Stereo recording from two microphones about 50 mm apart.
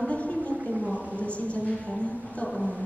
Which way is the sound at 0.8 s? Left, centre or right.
Left.